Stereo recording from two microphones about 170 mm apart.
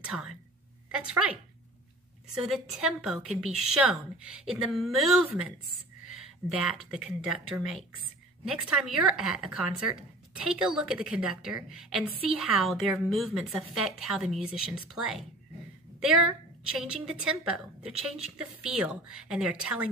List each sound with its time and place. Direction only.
0.0 s speech: 5° right (ahead or behind)
2.3 s a woman's voice: 5° right (ahead or behind)
6.6 s a woman's voice: 5° right (ahead or behind)